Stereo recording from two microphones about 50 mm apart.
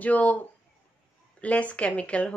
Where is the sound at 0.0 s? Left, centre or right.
Left.